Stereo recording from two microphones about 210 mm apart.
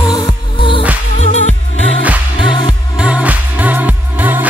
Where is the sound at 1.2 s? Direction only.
35° left (ahead or behind).